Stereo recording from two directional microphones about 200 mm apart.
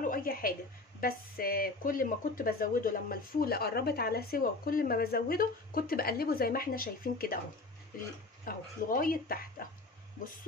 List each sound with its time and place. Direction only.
0.1 s a woman's voice: 45° left (ahead or behind)
8.5 s speech: 45° left (ahead or behind)